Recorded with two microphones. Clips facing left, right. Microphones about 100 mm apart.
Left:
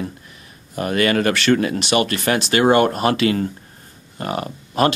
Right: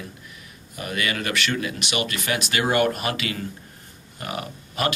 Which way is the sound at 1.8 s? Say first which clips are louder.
Left 9 dB; 40° left (ahead or behind).